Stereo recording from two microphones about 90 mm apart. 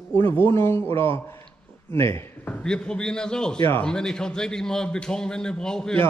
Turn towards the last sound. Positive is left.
turn(degrees=5)  # may be behind; listen again after turning